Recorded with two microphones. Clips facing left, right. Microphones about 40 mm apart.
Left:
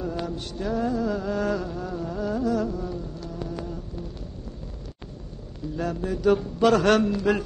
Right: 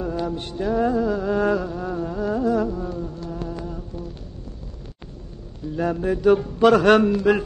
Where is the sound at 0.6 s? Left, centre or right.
Centre.